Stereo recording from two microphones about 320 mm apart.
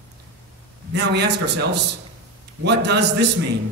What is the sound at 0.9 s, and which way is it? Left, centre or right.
A man's voice, right.